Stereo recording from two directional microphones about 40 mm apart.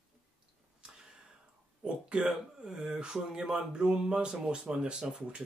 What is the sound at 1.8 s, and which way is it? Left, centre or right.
Speech, right.